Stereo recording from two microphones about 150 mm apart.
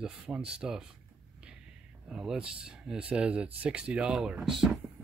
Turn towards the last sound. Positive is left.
turn(degrees=-5)  # may be behind; listen again after turning